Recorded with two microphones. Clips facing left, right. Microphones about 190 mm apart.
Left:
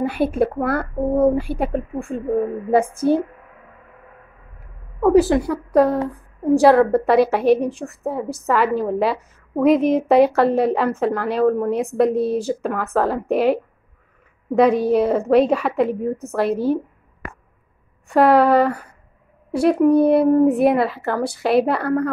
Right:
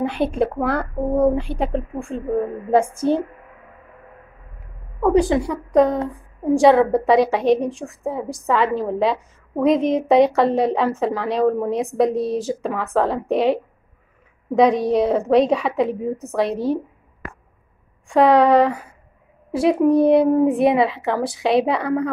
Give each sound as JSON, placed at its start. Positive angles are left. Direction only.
{"t": 0.0, "sound": "speech", "side_deg": 5}
{"t": 3.0, "sound": "speech", "side_deg": -25}
{"t": 5.0, "sound": "a woman's voice", "side_deg": 5}
{"t": 18.0, "sound": "a woman's voice", "side_deg": 5}